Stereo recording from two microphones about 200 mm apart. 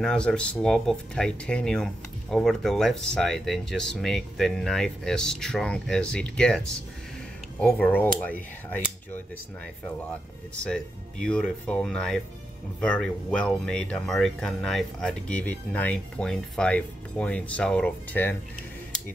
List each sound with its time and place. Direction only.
0.0 s speech: 5° left (ahead or behind)
7.6 s speech: 5° left (ahead or behind)
10.6 s speech: 5° left (ahead or behind)